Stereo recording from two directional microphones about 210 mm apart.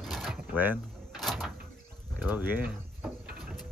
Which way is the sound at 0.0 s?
Centre (ahead or behind).